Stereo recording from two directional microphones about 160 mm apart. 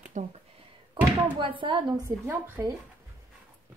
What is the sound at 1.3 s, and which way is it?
A woman's voice, 30° right (ahead or behind).